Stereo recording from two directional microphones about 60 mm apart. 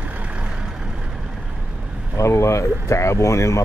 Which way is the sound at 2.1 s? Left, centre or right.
Left.